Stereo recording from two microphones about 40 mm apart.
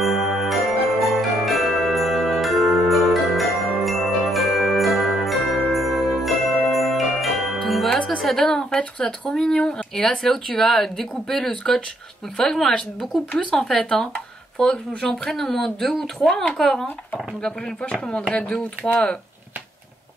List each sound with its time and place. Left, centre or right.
0.0 s jingle bell: centre
8.2 s speech: centre
13.5 s speech: centre